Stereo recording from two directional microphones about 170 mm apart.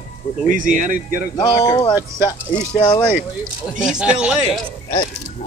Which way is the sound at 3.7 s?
5° right (ahead or behind).